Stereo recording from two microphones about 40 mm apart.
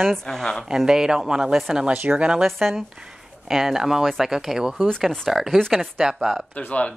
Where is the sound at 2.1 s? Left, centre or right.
Right.